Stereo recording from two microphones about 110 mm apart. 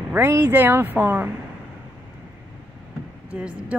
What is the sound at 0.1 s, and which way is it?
Speech, 20° right (ahead or behind).